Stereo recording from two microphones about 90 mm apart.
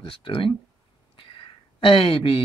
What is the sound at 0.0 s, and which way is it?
Speech, 75° left (ahead or behind).